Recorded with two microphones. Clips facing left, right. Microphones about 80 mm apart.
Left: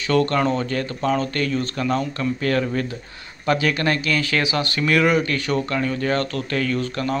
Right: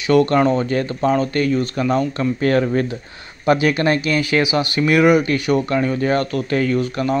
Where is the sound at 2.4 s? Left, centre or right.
Right.